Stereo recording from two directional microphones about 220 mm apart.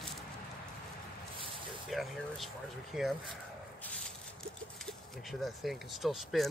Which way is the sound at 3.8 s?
5° left (ahead or behind).